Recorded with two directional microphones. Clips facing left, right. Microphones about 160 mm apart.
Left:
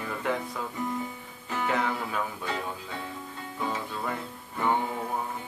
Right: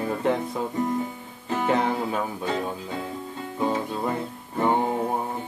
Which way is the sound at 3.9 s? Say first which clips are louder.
Right 6 dB; 30° right (ahead or behind).